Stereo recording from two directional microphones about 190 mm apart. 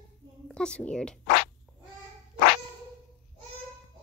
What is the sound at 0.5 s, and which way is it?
Speech, 5° left (ahead or behind).